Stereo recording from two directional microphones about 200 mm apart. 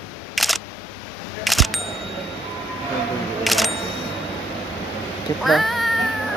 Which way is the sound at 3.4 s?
Centre (ahead or behind).